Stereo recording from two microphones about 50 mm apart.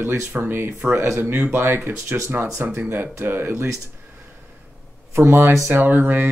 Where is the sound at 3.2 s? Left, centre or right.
Right.